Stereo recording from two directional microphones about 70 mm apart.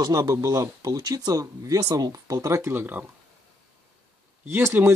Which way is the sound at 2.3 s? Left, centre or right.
Right.